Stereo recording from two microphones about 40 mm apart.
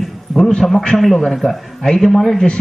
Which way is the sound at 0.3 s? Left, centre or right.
Left.